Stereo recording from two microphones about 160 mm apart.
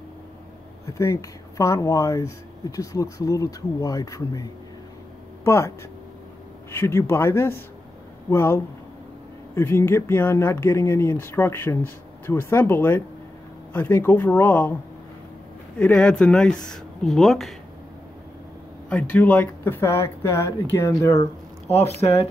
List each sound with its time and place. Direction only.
0.8 s speech: 20° left (ahead or behind)
6.7 s speech: 15° left (ahead or behind)
15.8 s speech: 5° left (ahead or behind)
18.9 s speech: 10° left (ahead or behind)
21.6 s speech: 40° left (ahead or behind)